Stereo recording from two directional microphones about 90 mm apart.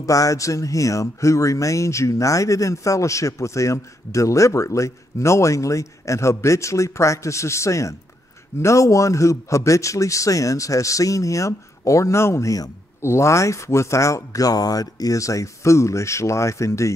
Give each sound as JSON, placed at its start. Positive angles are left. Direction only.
{"t": 0.0, "sound": "speech", "side_deg": 40}